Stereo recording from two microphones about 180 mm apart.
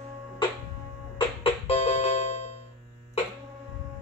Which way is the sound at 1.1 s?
35° left (ahead or behind).